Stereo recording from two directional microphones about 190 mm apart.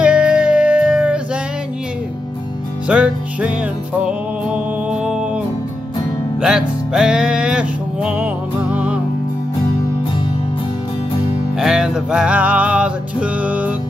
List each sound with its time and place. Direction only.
0.0 s music: 5° right (ahead or behind)
2.9 s music: 5° right (ahead or behind)
5.0 s music: 5° right (ahead or behind)
6.4 s music: 5° right (ahead or behind)
11.5 s music: 5° right (ahead or behind)